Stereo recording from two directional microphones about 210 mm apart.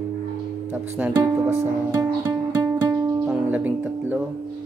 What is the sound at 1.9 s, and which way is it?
Music, 15° right (ahead or behind).